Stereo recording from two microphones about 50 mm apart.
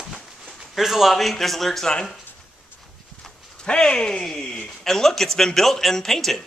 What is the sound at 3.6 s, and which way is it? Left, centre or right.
Speech, centre.